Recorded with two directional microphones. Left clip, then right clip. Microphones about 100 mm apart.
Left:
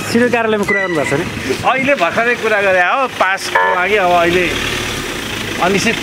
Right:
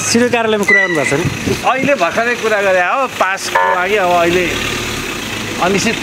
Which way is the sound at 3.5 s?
30° right (ahead or behind).